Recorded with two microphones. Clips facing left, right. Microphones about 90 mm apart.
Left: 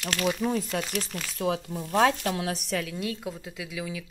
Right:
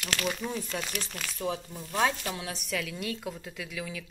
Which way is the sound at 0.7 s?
60° left (ahead or behind).